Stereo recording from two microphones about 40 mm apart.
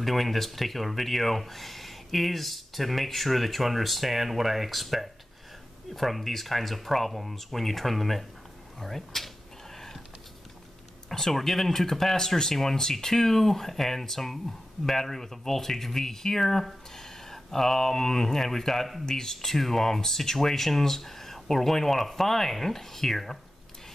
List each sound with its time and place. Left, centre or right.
0.0 s speech: centre
9.8 s a sound: centre
11.1 s speech: centre